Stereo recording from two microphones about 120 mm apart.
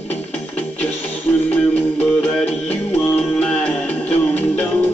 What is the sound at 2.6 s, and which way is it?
Music, 10° left (ahead or behind).